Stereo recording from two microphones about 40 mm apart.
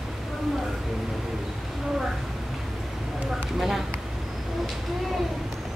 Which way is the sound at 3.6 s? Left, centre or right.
Centre.